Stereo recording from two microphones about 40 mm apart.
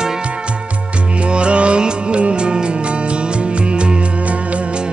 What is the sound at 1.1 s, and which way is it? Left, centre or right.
Music, right.